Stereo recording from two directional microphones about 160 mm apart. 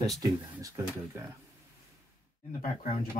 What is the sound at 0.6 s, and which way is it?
Speech, 20° right (ahead or behind).